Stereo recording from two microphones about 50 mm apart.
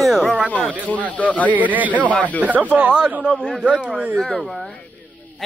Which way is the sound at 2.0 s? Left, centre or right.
Left.